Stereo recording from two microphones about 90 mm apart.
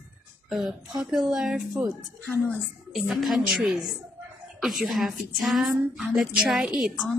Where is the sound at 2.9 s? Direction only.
Centre (ahead or behind).